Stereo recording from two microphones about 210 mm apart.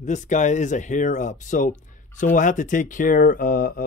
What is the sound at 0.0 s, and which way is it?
Speech, 35° left (ahead or behind).